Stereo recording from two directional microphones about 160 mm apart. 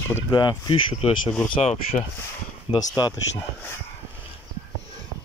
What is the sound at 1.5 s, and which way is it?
Speech, 40° left (ahead or behind).